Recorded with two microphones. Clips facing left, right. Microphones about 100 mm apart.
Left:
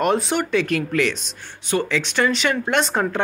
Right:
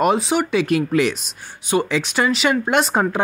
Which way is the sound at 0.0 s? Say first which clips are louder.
Right 2 dB; 5° right (ahead or behind).